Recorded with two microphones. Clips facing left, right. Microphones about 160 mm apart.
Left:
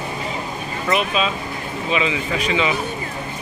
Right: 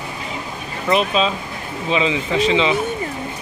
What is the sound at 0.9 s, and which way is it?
Speech, 30° right (ahead or behind).